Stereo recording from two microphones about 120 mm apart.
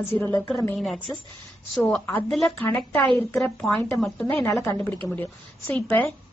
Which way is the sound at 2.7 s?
15° left (ahead or behind).